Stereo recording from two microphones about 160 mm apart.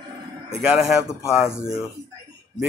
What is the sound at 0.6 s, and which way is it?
Speech, 5° right (ahead or behind).